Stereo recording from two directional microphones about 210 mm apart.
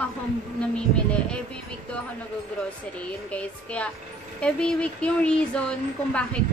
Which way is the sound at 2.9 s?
5° left (ahead or behind).